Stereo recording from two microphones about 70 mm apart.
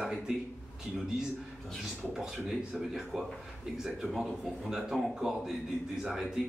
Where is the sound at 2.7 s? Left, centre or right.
Centre.